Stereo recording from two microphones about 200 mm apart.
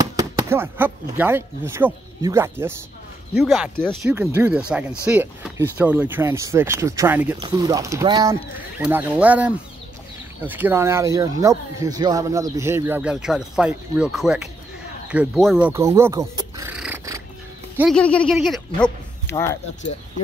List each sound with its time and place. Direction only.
0.1 s speech: 15° right (ahead or behind)
3.3 s speech: centre (ahead or behind)
4.1 s speech: 10° right (ahead or behind)
7.3 s speech: 20° right (ahead or behind)
16.7 s cat: 5° right (ahead or behind)
17.7 s speech: centre (ahead or behind)
18.8 s speech: 10° left (ahead or behind)